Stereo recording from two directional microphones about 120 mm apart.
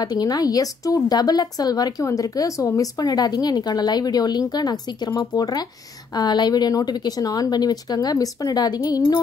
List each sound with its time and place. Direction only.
0.0 s a woman's voice: 35° left (ahead or behind)